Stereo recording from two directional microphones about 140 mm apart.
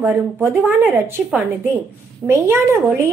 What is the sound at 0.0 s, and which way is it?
A woman's voice, 15° right (ahead or behind).